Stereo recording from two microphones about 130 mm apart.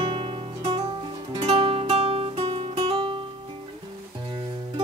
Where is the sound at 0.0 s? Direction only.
40° right (ahead or behind).